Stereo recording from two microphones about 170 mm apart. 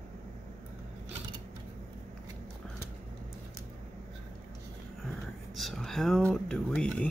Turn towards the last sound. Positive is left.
turn(degrees=5)  # may be behind; listen again after turning